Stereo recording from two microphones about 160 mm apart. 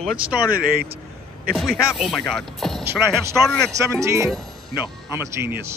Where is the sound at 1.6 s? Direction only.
Centre (ahead or behind).